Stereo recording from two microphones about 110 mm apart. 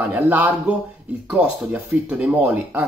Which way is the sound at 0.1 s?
15° right (ahead or behind).